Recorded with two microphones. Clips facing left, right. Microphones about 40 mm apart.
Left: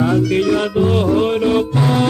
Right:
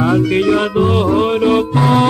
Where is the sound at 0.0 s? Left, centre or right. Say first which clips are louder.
Right 2 dB; right.